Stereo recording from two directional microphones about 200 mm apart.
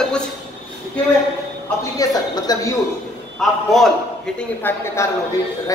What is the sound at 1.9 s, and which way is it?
Speech, 20° left (ahead or behind).